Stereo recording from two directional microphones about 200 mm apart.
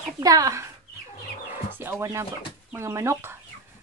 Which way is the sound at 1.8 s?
15° right (ahead or behind).